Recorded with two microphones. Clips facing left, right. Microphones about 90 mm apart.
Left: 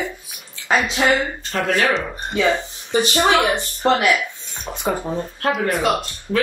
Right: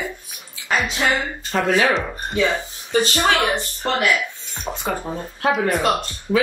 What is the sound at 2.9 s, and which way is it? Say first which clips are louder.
Speech: left 2 dB; 20° left (ahead or behind).